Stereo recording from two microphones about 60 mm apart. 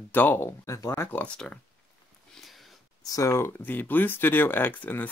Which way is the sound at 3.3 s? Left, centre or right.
Left.